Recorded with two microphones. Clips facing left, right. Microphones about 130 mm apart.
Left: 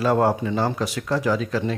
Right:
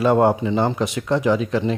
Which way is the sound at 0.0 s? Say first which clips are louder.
Right 3 dB; 25° right (ahead or behind).